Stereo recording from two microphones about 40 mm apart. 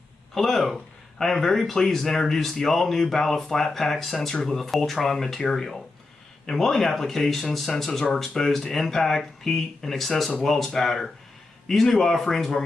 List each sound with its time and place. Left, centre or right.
0.3 s speech: centre